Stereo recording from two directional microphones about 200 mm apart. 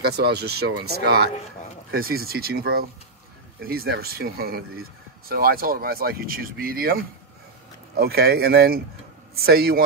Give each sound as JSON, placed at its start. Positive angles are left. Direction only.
{"t": 0.0, "sound": "speech", "side_deg": -55}